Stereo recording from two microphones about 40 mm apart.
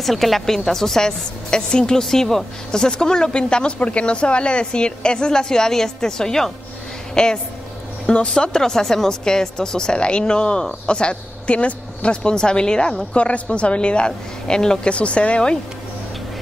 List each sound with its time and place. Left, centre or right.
0.0 s a woman's voice: centre
13.1 s a woman's voice: left